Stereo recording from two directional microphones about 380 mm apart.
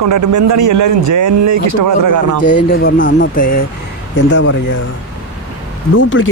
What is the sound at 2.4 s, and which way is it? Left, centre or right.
Speech, left.